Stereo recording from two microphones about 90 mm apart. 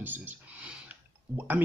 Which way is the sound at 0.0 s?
20° right (ahead or behind).